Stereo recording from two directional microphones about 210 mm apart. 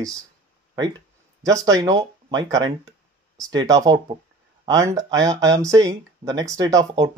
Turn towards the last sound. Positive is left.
turn(degrees=-15)  # may be behind; listen again after turning